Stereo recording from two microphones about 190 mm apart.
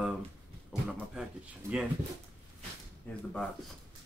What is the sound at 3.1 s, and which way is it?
Speech, 10° left (ahead or behind).